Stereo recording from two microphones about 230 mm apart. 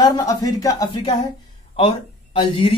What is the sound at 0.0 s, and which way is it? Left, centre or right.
Speech, centre.